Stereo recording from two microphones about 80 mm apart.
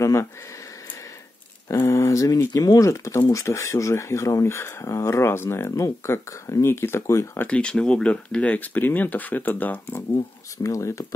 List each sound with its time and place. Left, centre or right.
0.0 s speech: left
1.7 s speech: left
7.4 s speech: centre
10.6 s speech: left